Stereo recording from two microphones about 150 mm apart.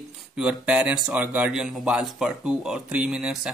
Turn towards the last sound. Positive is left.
turn(degrees=-5)  # may be behind; listen again after turning